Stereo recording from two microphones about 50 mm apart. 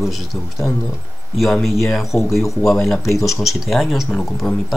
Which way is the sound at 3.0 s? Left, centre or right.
Left.